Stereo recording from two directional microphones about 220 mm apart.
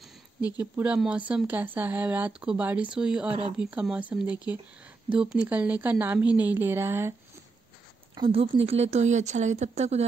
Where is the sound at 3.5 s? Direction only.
5° right (ahead or behind).